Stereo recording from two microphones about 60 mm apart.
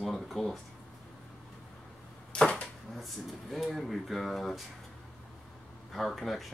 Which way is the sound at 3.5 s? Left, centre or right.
Centre.